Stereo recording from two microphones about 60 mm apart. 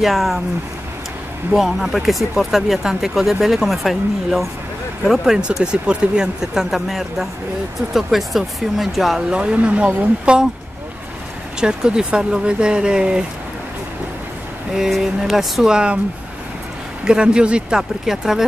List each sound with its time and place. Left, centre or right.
0.0 s speech: centre
1.5 s speech: centre
5.4 s speech: centre
9.3 s speech: centre
11.6 s speech: centre
14.7 s speech: centre
17.0 s speech: centre